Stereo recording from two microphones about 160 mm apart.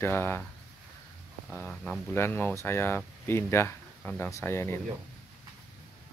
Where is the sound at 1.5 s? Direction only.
10° left (ahead or behind).